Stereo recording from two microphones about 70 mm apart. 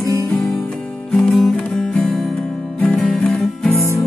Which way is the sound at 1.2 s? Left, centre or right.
Centre.